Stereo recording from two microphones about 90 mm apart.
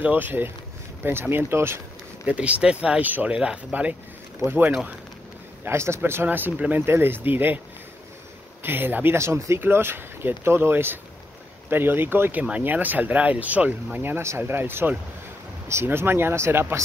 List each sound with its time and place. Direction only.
0.0 s speech: 20° right (ahead or behind)
2.2 s speech: 15° right (ahead or behind)
8.6 s speech: 25° right (ahead or behind)